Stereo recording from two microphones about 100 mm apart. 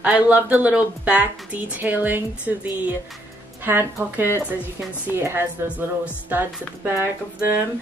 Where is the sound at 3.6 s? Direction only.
25° right (ahead or behind).